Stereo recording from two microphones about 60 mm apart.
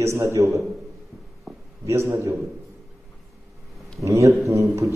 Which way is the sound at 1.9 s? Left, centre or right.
Right.